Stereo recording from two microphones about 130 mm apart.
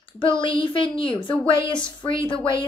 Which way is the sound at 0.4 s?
40° left (ahead or behind).